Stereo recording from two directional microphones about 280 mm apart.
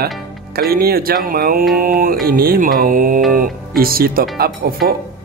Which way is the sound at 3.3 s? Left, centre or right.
Right.